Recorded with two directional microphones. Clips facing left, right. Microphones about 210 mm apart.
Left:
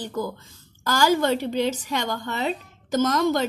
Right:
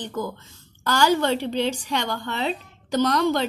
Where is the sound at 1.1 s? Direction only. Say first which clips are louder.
Even; 45° left (ahead or behind).